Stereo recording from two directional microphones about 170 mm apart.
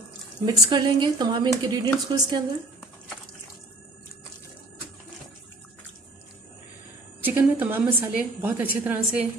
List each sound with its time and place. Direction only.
0.5 s speech: 25° right (ahead or behind)
7.2 s a woman's voice: 10° right (ahead or behind)